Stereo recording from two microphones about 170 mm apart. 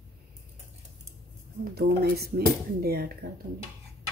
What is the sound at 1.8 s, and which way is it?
Speech, 70° right (ahead or behind).